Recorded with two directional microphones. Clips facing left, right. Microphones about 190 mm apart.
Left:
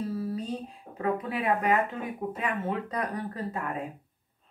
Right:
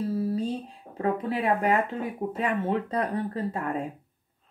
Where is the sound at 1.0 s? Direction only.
30° right (ahead or behind).